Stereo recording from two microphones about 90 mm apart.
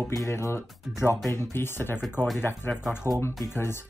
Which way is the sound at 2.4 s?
20° left (ahead or behind).